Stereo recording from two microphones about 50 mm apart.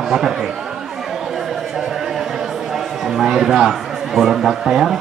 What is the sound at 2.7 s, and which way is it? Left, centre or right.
A man's voice, centre.